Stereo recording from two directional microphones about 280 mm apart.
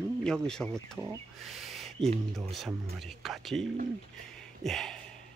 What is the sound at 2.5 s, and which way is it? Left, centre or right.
Speech, centre.